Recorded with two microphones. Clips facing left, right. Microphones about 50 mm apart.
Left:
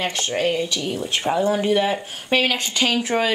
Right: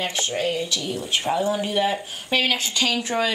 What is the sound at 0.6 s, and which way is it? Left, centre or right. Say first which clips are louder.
Speech: left 3 dB; left.